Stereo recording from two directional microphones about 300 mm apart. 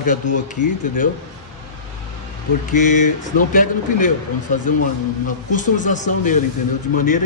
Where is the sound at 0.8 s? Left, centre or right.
Left.